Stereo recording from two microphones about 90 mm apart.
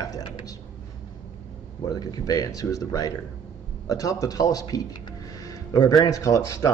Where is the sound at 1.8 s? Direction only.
45° left (ahead or behind).